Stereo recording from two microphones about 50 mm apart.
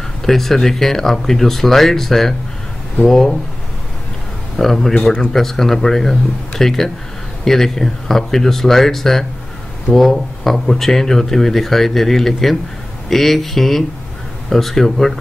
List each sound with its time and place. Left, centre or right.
0.2 s speech: centre
4.6 s speech: centre